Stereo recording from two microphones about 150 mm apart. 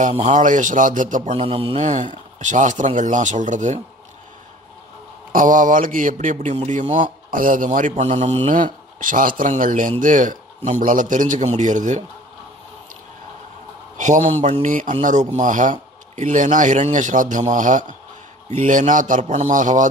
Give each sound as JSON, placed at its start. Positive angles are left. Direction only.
{"t": 0.0, "sound": "a man's voice", "side_deg": -50}
{"t": 1.4, "sound": "mantra", "side_deg": -40}
{"t": 2.3, "sound": "a man's voice", "side_deg": -55}
{"t": 5.3, "sound": "a man's voice", "side_deg": -65}
{"t": 7.9, "sound": "mantra", "side_deg": -50}
{"t": 9.0, "sound": "a man's voice", "side_deg": -65}
{"t": 13.9, "sound": "a man's voice", "side_deg": -55}